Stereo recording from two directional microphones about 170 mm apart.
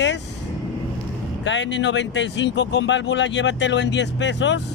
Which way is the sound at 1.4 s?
90° left.